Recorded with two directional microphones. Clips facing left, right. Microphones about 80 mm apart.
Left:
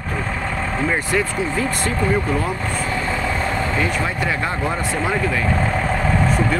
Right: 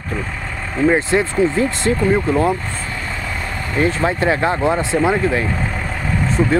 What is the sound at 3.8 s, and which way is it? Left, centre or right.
Speech, right.